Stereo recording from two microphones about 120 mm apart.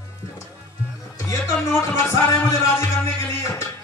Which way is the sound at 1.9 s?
25° left (ahead or behind).